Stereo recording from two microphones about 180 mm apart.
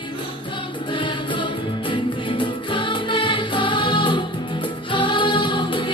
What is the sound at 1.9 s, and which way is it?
Music, 25° left (ahead or behind).